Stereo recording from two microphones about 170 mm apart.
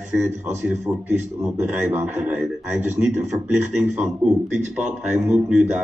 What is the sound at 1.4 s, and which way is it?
A man's voice, 5° right (ahead or behind).